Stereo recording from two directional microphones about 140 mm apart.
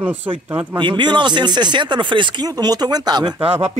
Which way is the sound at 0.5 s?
35° right (ahead or behind).